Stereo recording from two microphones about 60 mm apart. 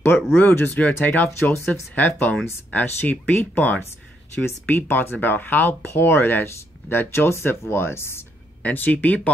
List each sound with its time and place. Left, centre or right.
0.4 s speech: left
4.5 s speech: left
8.6 s speech: left